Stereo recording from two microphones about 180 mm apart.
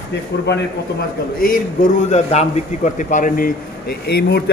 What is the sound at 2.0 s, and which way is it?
A man's voice, 35° left (ahead or behind).